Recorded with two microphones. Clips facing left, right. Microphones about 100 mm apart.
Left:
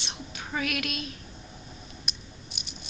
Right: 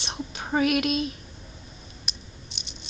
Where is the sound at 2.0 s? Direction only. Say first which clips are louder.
Even; 5° left (ahead or behind).